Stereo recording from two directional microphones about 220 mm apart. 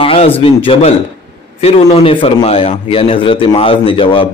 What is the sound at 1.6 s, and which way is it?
A man's voice, 25° left (ahead or behind).